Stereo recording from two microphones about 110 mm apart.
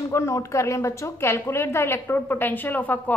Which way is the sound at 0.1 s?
25° left (ahead or behind).